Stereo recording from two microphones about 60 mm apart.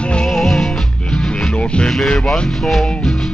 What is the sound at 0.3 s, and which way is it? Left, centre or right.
Music, centre.